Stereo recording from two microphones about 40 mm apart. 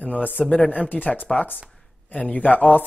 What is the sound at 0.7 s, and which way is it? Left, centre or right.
Speech, left.